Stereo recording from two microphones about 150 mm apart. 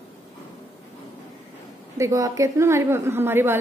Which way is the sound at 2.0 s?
20° right (ahead or behind).